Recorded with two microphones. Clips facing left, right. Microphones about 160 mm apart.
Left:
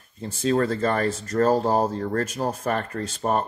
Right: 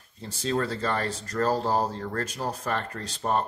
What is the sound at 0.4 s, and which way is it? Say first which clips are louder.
Speech: left 6 dB; 50° left (ahead or behind).